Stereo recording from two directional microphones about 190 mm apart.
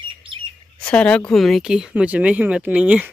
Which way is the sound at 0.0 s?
25° right (ahead or behind).